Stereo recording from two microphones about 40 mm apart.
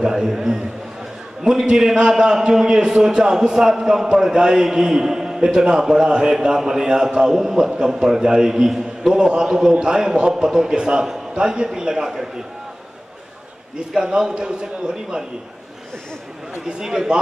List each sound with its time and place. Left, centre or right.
0.0 s a man's voice: centre
13.7 s a man's voice: centre
16.6 s a man's voice: centre